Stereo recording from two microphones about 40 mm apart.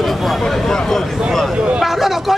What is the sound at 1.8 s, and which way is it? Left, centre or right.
Speech, centre.